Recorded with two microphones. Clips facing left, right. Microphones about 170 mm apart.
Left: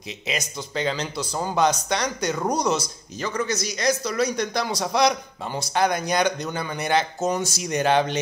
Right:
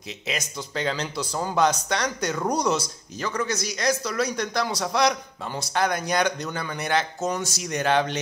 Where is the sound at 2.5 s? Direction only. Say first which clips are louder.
Even; 10° right (ahead or behind).